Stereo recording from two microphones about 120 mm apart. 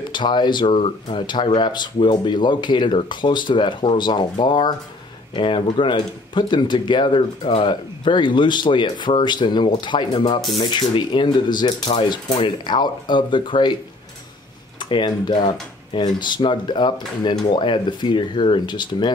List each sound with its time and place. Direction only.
0.1 s speech: 40° left (ahead or behind)
14.8 s speech: 40° left (ahead or behind)